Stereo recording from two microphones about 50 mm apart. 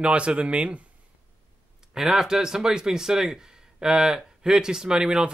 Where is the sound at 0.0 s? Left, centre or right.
Right.